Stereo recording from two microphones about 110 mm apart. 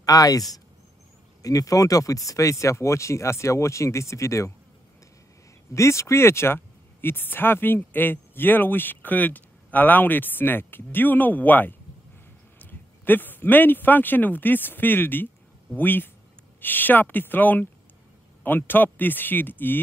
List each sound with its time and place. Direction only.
0.0 s speech: 35° left (ahead or behind)
5.8 s a man's voice: 25° left (ahead or behind)